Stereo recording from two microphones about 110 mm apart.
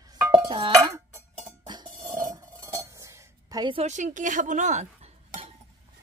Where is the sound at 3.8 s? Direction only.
90° right.